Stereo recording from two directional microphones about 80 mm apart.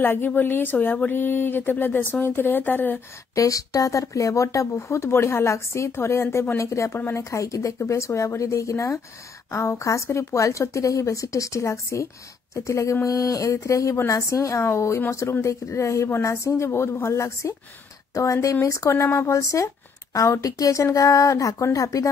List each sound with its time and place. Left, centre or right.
0.0 s speech: left
3.3 s speech: left